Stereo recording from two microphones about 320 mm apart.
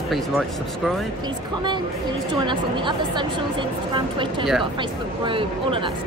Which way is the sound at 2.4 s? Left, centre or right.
Centre.